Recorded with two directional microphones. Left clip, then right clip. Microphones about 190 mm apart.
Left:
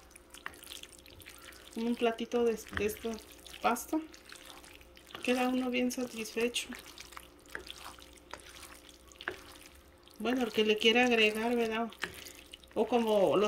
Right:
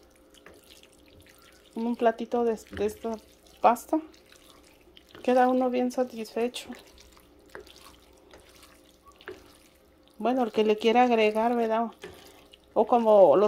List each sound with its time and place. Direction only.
1.8 s speech: 15° right (ahead or behind)
5.2 s speech: 65° right (ahead or behind)
5.7 s speech: 15° right (ahead or behind)
9.2 s a sound: 10° right (ahead or behind)
10.2 s speech: 15° right (ahead or behind)